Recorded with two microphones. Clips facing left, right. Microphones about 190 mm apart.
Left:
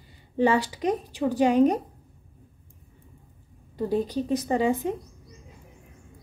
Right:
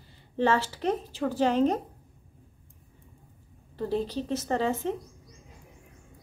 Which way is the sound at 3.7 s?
15° left (ahead or behind).